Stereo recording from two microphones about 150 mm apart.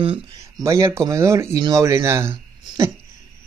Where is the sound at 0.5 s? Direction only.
20° right (ahead or behind).